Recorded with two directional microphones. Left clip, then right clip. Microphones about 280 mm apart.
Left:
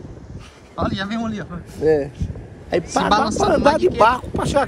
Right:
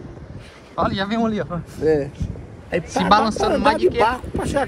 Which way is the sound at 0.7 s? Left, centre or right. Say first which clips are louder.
Right 3 dB; centre.